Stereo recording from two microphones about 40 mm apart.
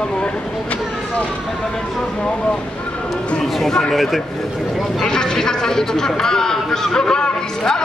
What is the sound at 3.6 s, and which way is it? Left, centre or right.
Speech, centre.